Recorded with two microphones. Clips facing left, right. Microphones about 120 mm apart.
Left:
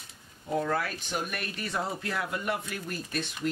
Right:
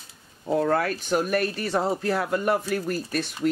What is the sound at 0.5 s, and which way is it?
Speech, 50° right (ahead or behind).